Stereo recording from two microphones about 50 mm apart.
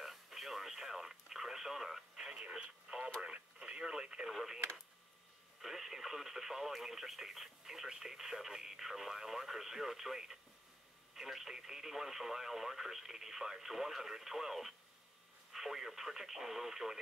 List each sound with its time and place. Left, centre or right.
0.0 s radio: centre
4.3 s radio: centre
5.6 s speech: centre